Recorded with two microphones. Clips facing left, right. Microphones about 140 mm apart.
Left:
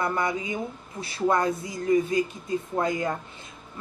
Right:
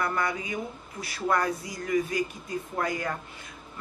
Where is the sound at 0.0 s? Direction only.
20° left (ahead or behind).